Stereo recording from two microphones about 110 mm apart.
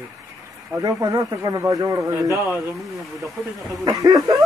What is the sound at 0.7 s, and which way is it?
Speech, 30° right (ahead or behind).